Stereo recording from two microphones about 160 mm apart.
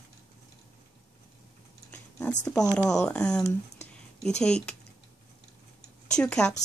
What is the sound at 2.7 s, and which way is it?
Speech, 5° left (ahead or behind).